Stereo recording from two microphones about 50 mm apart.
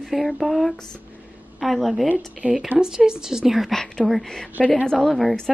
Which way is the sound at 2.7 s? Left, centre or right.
Centre.